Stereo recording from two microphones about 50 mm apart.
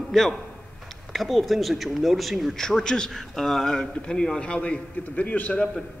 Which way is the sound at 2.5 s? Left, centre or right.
Centre.